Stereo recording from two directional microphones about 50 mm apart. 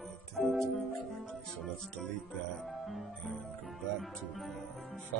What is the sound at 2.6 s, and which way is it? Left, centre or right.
Music, centre.